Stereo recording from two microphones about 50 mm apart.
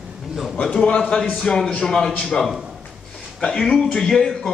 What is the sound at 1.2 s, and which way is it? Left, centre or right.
Speech, centre.